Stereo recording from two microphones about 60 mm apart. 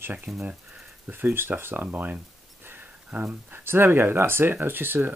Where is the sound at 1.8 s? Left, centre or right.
Right.